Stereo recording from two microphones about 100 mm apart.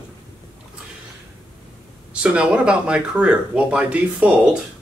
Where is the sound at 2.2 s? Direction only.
10° right (ahead or behind).